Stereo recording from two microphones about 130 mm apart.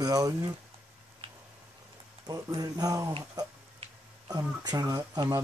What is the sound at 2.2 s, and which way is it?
Speech, 30° right (ahead or behind).